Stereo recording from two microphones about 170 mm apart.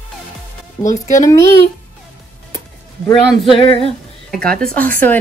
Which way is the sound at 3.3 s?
30° left (ahead or behind).